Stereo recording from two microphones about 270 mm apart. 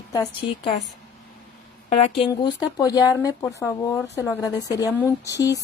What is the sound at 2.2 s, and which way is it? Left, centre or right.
A woman's voice, centre.